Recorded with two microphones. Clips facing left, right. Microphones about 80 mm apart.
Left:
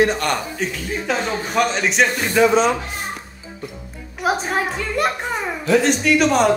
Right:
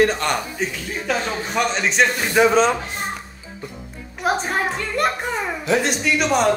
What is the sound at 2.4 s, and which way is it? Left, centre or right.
Speech, centre.